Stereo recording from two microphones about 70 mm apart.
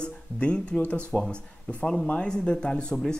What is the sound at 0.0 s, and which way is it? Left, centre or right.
Speech, centre.